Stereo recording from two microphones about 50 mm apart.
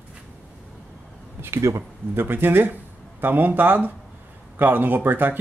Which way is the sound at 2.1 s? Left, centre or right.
Right.